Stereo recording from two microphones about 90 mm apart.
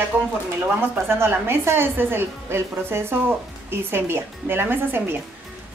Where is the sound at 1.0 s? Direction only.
25° right (ahead or behind).